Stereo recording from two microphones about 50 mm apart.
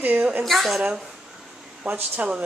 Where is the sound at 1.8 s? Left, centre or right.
Right.